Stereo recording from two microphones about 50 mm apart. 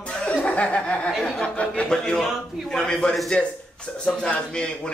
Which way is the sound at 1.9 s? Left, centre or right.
Centre.